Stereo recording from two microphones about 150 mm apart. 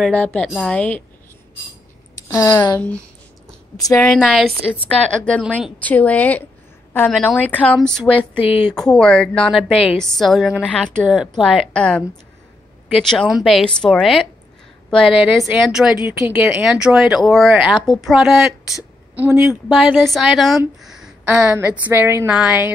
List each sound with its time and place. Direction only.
0.0 s a woman's voice: 5° left (ahead or behind)
2.1 s speech: 20° left (ahead or behind)
4.3 s speech: 5° right (ahead or behind)
4.8 s a woman's voice: 10° left (ahead or behind); by 22.7 s 10° right (ahead or behind)